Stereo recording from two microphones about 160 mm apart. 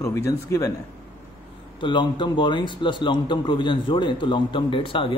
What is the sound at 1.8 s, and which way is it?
A man's voice, 30° left (ahead or behind).